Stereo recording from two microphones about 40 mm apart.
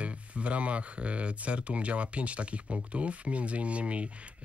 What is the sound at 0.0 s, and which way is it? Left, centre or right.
Speech, right.